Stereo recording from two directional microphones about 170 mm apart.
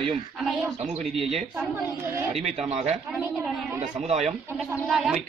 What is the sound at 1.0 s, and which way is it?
Speech, centre (ahead or behind).